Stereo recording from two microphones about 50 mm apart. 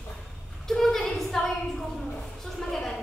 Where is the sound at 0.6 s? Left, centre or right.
Centre.